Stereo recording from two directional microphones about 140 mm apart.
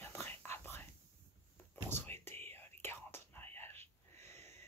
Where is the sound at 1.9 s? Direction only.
15° left (ahead or behind).